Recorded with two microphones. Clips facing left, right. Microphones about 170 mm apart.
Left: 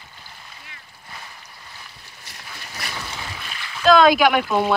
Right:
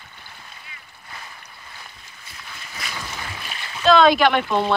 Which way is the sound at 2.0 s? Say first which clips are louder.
Left 1 dB; 75° left (ahead or behind).